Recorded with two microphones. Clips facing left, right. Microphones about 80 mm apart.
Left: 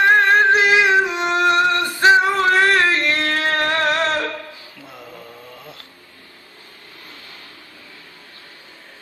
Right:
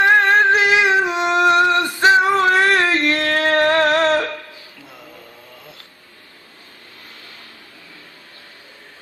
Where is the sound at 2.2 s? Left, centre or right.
Right.